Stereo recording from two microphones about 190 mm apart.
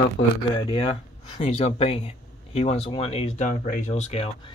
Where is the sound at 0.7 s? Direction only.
30° left (ahead or behind).